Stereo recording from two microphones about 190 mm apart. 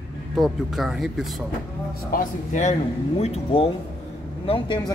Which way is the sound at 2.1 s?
40° left (ahead or behind).